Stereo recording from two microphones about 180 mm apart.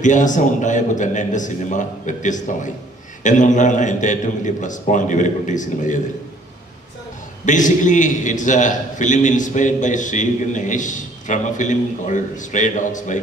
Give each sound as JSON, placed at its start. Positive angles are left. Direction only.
{"t": 0.0, "sound": "a man's voice", "side_deg": 45}
{"t": 7.4, "sound": "a man's voice", "side_deg": 45}